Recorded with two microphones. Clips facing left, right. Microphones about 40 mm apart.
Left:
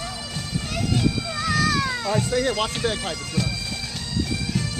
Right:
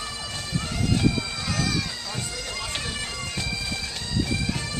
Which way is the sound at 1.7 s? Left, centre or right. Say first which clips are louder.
Left 6 dB; left.